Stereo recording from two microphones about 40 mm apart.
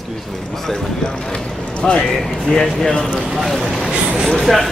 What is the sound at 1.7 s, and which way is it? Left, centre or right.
Speech, left.